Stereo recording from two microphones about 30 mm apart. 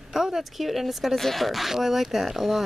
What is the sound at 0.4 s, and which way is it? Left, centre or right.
Speech, centre.